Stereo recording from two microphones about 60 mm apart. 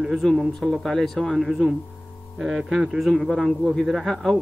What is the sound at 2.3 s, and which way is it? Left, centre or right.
A man's voice, centre.